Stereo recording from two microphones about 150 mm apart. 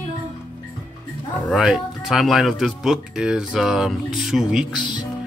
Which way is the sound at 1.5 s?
5° right (ahead or behind).